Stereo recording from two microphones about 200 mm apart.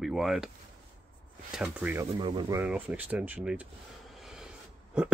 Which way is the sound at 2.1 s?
25° right (ahead or behind).